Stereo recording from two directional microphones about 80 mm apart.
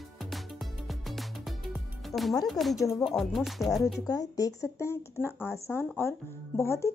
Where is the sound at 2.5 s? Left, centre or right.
Centre.